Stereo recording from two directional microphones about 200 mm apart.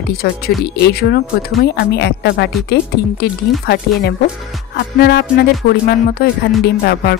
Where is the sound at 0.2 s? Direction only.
55° left (ahead or behind).